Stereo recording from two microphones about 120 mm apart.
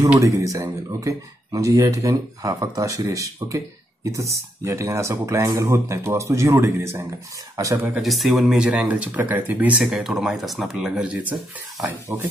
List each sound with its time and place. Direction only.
0.2 s speech: 25° right (ahead or behind)
8.0 s speech: centre (ahead or behind)
12.1 s speech: 20° right (ahead or behind)